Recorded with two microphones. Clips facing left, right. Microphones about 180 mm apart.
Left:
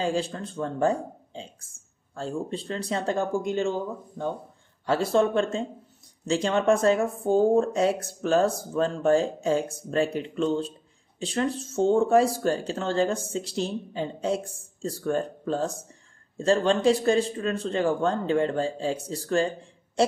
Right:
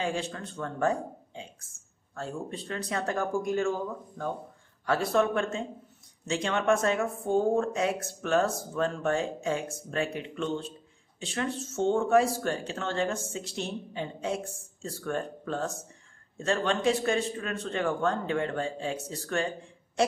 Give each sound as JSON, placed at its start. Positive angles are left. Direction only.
{"t": 0.0, "sound": "speech", "side_deg": 30}
{"t": 4.8, "sound": "speech", "side_deg": 30}